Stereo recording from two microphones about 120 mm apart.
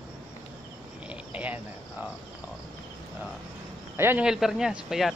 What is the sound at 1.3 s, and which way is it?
Cricket, 15° right (ahead or behind).